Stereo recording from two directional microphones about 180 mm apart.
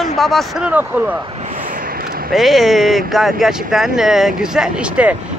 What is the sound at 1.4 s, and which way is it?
Vehicle, 50° right (ahead or behind).